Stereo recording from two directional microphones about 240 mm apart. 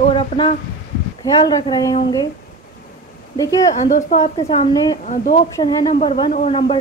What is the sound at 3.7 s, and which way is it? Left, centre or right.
A woman's voice, left.